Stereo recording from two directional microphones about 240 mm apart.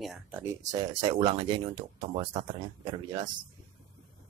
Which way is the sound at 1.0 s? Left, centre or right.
Right.